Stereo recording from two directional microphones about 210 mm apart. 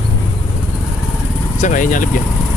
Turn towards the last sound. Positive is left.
turn(degrees=40)  # may be behind; listen again after turning